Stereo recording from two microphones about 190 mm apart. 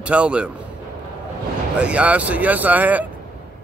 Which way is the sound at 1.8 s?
5° right (ahead or behind).